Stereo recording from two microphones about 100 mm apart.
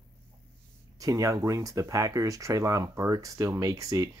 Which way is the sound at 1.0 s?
35° right (ahead or behind).